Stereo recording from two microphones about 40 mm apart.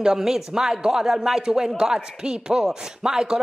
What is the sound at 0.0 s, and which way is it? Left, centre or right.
Speech, centre.